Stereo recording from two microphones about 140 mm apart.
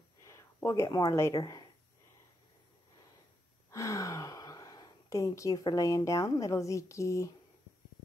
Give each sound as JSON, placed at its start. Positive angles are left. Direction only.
{"t": 0.2, "sound": "speech", "side_deg": 20}
{"t": 3.7, "sound": "a woman's voice", "side_deg": 20}